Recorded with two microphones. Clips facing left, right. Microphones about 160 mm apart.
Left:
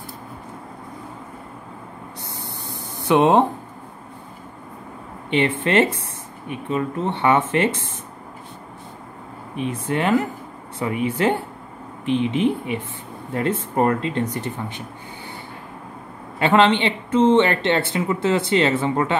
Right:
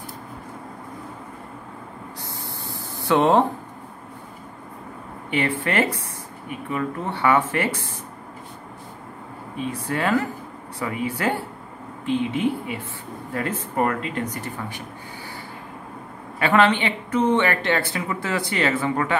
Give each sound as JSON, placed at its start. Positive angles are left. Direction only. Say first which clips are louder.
{"t": 2.4, "sound": "a sound", "louder": "even", "side_deg": 20}
{"t": 5.3, "sound": "speech", "louder": "left 4 dB", "side_deg": 20}
{"t": 9.6, "sound": "speech", "louder": "left 3 dB", "side_deg": 20}
{"t": 16.3, "sound": "speech", "louder": "left 2 dB", "side_deg": 25}